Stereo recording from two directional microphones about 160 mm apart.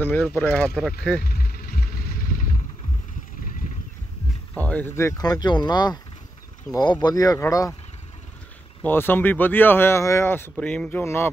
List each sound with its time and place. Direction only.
0.0 s speech: 10° left (ahead or behind)
1.2 s vehicle: 70° left (ahead or behind)
4.6 s speech: 10° left (ahead or behind)
8.8 s speech: 10° left (ahead or behind)